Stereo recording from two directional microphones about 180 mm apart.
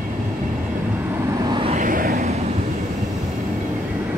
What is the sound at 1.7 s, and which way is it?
Vehicle, 50° right (ahead or behind).